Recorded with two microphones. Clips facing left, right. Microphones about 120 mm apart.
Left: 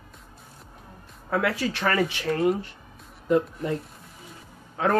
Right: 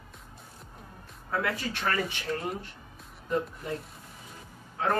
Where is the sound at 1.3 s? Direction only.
90° left.